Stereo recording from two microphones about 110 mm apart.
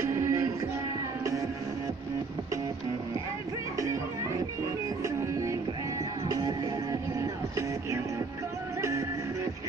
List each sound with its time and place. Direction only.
0.0 s music: 25° right (ahead or behind)
3.8 s music: 30° right (ahead or behind)